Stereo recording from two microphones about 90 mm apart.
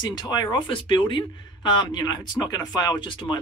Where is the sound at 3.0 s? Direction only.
65° left (ahead or behind).